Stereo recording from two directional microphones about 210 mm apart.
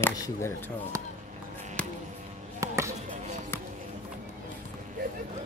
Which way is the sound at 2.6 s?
15° right (ahead or behind).